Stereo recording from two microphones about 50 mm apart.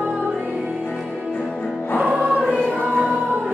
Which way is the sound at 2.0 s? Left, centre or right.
Right.